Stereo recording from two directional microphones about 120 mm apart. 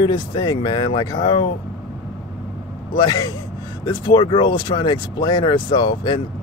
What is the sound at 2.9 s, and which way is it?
Speech, 35° left (ahead or behind).